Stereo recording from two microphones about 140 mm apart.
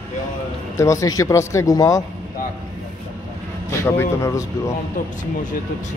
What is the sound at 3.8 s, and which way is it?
Speech, 20° left (ahead or behind).